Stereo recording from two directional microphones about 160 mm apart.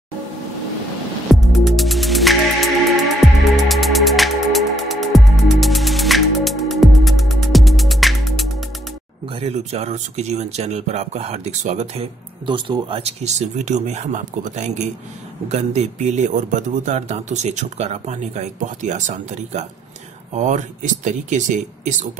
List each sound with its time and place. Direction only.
1.3 s music: centre (ahead or behind)
9.3 s speech: 40° right (ahead or behind)